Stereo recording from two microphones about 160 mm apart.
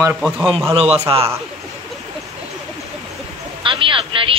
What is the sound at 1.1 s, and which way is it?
Speech, 30° right (ahead or behind).